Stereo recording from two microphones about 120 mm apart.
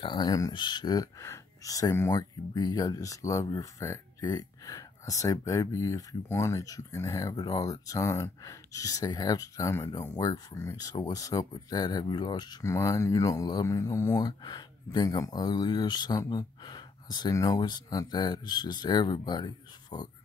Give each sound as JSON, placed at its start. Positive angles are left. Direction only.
{"t": 0.0, "sound": "speech", "side_deg": 40}
{"t": 10.1, "sound": "speech", "side_deg": 35}
{"t": 12.6, "sound": "speech", "side_deg": 25}